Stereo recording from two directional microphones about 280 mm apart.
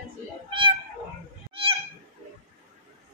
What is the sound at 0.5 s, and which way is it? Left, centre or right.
Cat, centre.